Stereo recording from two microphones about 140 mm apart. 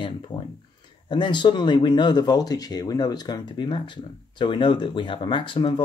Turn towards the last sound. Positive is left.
turn(degrees=35)  # may be behind; listen again after turning